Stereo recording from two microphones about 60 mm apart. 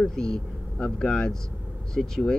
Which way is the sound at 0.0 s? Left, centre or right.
Centre.